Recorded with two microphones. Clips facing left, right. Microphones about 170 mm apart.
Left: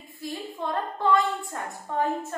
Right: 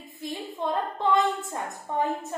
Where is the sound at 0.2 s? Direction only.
20° right (ahead or behind).